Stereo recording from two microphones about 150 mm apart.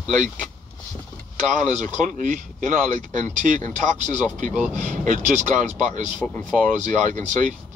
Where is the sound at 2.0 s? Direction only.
60° right (ahead or behind).